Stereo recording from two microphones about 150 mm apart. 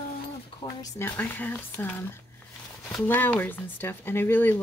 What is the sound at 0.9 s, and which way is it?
Speech, 15° left (ahead or behind).